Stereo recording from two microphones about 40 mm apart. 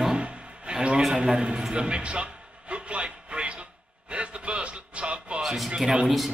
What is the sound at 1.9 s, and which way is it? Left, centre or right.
Speech, right.